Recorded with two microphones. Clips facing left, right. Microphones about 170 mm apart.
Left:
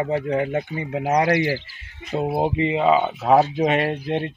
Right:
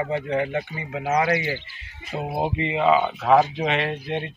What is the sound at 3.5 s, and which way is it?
Speech, 45° left (ahead or behind).